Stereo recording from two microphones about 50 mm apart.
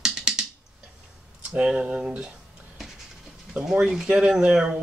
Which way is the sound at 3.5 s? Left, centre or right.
Centre.